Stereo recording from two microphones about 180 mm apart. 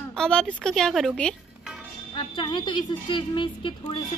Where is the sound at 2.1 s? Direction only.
25° left (ahead or behind).